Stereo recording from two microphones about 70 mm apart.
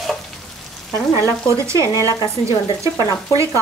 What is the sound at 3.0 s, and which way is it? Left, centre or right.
Speech, left.